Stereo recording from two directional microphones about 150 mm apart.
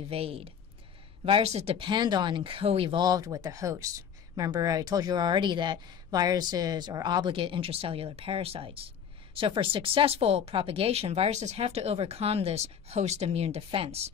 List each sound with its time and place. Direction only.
0.1 s speech: 40° right (ahead or behind)